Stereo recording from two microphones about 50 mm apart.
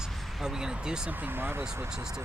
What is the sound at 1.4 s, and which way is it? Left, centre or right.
Speech, right.